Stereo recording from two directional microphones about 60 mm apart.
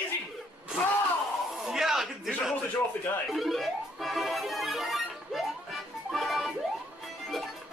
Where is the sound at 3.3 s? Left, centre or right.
Centre.